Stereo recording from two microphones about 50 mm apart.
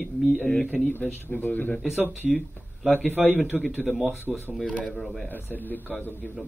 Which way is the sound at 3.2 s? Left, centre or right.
Centre.